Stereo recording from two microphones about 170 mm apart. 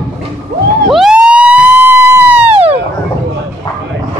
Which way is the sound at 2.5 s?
35° right (ahead or behind).